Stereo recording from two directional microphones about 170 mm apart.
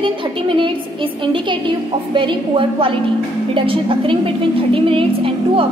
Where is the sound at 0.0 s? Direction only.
30° right (ahead or behind).